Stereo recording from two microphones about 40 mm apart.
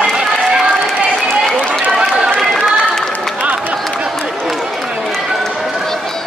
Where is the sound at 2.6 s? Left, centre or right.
Centre.